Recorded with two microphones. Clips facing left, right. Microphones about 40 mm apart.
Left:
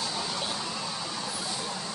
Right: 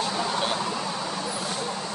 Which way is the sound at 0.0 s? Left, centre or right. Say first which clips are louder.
Right 6 dB; right.